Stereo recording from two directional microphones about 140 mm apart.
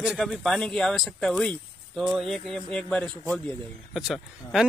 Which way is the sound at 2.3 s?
Centre (ahead or behind).